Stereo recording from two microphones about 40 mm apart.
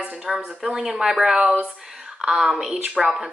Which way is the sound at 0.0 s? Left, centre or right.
Centre.